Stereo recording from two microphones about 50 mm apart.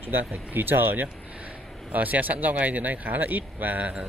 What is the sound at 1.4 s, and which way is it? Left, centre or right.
Speech, right.